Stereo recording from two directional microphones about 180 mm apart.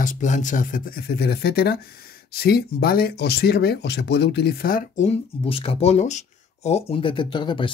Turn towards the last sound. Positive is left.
turn(degrees=25)  # may be behind; listen again after turning